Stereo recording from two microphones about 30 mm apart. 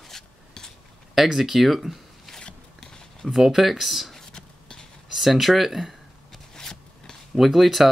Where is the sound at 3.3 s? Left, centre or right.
Centre.